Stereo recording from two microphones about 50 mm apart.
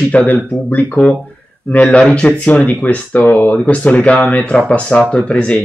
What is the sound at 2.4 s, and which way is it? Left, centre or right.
Speech, left.